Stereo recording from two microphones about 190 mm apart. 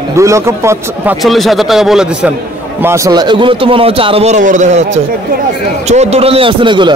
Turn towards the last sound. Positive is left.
turn(degrees=-25)  # may be behind; listen again after turning